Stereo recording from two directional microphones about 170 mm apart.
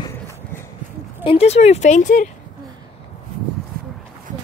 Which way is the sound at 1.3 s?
35° left (ahead or behind).